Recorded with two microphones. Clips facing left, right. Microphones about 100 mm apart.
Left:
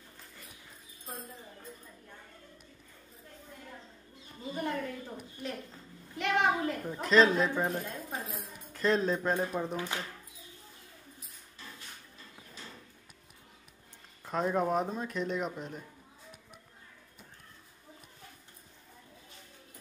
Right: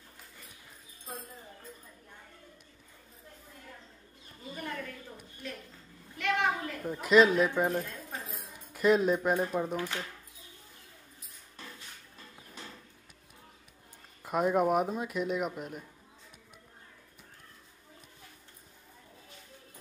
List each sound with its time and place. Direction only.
4.6 s a sound: 25° left (ahead or behind)
6.8 s speech: 5° right (ahead or behind)
7.8 s a sound: 15° left (ahead or behind)
8.7 s speech: 10° right (ahead or behind)
9.8 s speech: 15° left (ahead or behind)
14.2 s speech: 10° right (ahead or behind)